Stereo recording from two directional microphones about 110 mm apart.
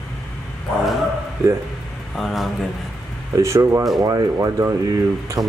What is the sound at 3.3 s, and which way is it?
Speech, 25° right (ahead or behind).